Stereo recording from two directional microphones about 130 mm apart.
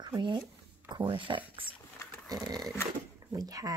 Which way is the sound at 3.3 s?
25° right (ahead or behind).